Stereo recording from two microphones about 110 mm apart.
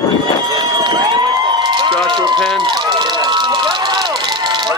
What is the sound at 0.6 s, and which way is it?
Run, 45° right (ahead or behind).